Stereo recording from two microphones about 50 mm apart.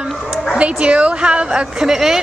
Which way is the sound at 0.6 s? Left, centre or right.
Right.